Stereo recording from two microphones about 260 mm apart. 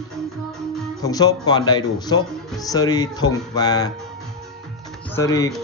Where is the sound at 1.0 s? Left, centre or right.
Centre.